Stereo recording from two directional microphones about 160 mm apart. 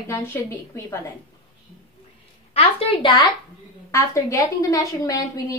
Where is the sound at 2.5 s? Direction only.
35° left (ahead or behind).